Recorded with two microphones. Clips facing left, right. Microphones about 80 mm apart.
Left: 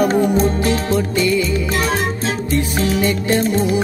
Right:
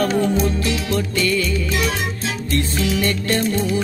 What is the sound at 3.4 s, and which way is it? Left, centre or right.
Music, left.